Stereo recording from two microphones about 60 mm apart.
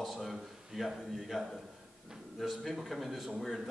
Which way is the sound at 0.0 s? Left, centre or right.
Centre.